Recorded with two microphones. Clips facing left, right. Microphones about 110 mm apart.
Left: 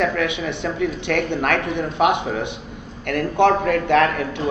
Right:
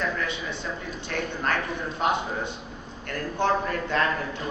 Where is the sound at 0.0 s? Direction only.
70° left (ahead or behind).